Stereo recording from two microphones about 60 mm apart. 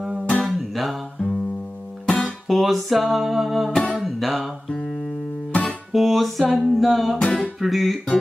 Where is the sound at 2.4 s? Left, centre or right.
Centre.